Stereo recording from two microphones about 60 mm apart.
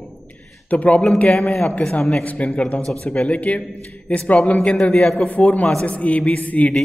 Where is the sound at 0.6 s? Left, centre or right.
Left.